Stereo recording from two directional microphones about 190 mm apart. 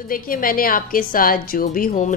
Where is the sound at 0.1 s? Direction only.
45° left (ahead or behind).